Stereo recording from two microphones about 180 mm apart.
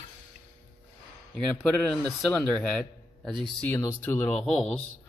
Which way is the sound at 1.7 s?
5° left (ahead or behind).